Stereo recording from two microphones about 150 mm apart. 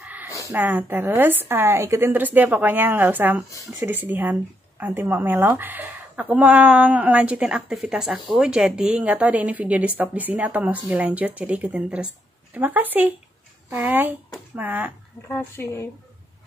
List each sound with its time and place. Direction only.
0.0 s a sound: 10° right (ahead or behind)
0.5 s speech: 10° right (ahead or behind)
15.2 s speech: 15° left (ahead or behind)